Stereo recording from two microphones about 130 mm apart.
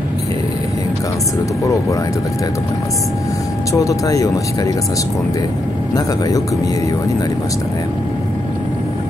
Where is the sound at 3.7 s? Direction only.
25° left (ahead or behind).